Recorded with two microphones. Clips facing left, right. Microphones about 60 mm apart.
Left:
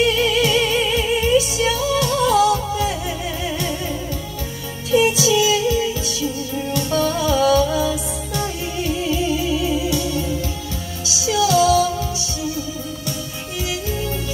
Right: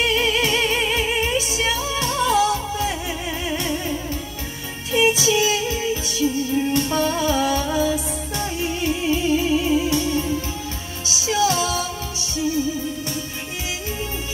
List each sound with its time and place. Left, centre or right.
0.0 s music: right
4.9 s music: right